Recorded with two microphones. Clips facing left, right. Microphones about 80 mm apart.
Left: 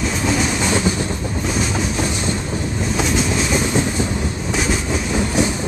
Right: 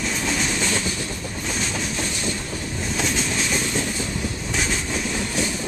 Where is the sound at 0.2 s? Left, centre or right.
Centre.